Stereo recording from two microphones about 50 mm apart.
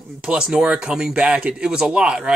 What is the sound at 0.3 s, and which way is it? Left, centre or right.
Speech, centre.